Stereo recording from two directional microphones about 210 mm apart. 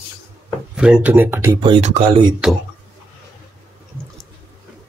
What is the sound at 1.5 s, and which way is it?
Speech, 25° right (ahead or behind).